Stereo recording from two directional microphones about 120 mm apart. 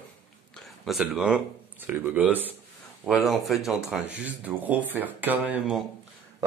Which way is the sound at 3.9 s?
10° right (ahead or behind).